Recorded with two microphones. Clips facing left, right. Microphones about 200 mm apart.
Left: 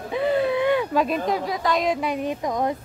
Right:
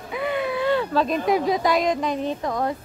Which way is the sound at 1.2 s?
20° right (ahead or behind).